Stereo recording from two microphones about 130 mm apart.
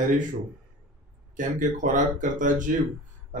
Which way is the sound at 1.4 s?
80° right.